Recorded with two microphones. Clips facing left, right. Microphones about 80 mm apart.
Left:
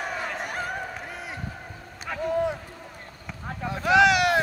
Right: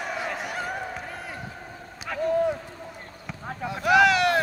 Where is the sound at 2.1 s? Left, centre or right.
Centre.